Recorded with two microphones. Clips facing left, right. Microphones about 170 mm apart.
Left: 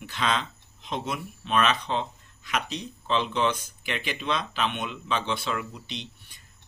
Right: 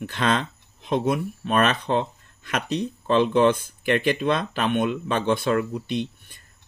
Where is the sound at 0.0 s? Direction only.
50° right (ahead or behind).